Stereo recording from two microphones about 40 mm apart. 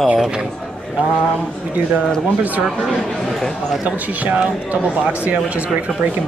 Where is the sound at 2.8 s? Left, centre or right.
Centre.